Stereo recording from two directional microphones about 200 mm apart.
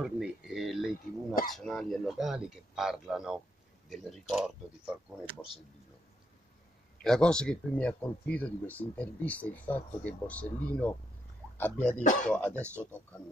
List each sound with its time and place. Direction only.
0.0 s a man's voice: 5° right (ahead or behind)
7.0 s speech: 5° left (ahead or behind)
12.0 s speech: 40° left (ahead or behind)
12.3 s speech: 5° left (ahead or behind)